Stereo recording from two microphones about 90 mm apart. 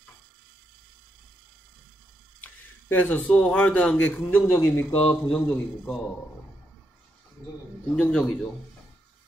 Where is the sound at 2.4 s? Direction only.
20° left (ahead or behind).